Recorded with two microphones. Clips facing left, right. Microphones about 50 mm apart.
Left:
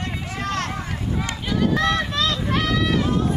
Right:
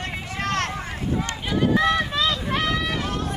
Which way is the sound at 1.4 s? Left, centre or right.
Centre.